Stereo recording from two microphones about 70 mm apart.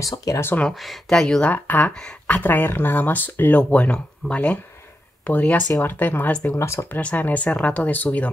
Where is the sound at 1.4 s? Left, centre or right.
Left.